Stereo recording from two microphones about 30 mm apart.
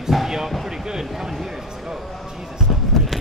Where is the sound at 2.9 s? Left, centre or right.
Centre.